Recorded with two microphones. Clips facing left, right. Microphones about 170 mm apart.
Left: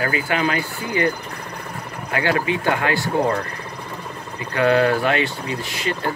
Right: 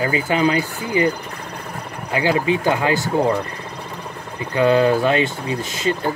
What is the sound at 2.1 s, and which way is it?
Speech, 15° right (ahead or behind).